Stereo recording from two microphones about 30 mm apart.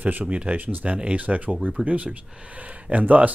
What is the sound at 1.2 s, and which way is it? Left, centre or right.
Speech, right.